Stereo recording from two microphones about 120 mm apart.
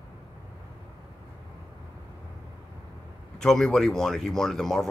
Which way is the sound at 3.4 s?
5° left (ahead or behind).